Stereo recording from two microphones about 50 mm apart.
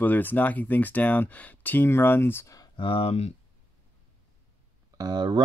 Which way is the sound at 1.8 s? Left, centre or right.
Left.